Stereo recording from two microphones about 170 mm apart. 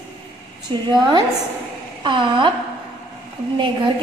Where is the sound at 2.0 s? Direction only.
30° right (ahead or behind).